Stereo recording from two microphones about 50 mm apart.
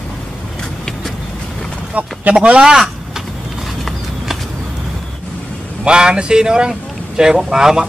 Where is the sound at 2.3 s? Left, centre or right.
Centre.